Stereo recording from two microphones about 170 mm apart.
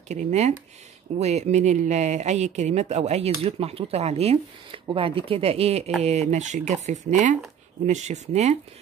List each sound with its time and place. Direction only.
0.1 s speech: 40° right (ahead or behind)